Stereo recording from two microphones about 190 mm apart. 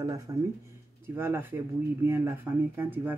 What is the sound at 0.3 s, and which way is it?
Speech, 15° right (ahead or behind).